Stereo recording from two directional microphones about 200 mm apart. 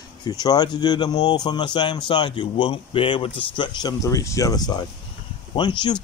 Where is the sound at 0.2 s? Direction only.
20° left (ahead or behind).